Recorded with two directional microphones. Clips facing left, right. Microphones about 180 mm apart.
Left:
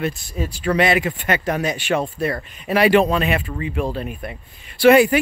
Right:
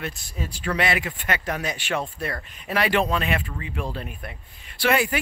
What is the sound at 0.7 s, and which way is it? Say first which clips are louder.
Speech: left 7 dB; 20° left (ahead or behind).